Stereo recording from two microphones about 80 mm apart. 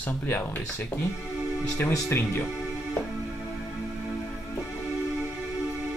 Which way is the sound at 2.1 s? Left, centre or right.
Left.